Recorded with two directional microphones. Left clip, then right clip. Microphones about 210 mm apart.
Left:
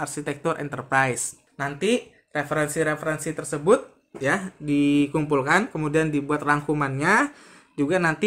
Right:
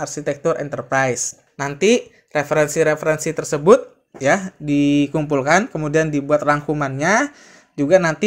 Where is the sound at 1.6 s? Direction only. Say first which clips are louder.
Right 7 dB; 30° right (ahead or behind).